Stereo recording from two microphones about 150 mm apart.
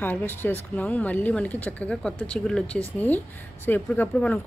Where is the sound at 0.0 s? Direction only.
15° left (ahead or behind).